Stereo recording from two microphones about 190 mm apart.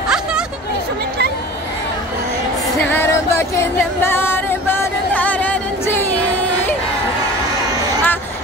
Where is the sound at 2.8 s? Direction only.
10° left (ahead or behind).